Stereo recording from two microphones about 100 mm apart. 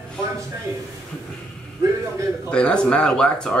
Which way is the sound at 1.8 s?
30° right (ahead or behind).